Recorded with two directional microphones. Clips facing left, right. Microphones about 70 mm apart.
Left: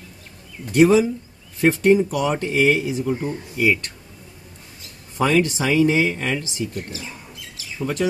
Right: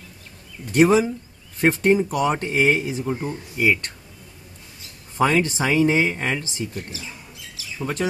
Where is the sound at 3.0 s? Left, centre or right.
Centre.